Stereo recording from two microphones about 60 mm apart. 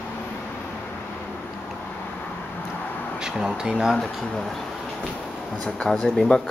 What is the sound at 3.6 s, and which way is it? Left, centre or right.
Speech, centre.